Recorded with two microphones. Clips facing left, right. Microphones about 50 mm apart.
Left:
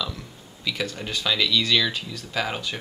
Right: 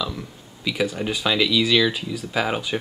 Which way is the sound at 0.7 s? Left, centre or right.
Centre.